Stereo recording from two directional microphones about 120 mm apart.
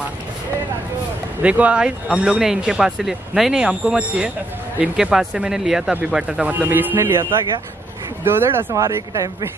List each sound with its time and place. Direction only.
1.4 s speech: 10° right (ahead or behind); by 9.3 s 25° right (ahead or behind)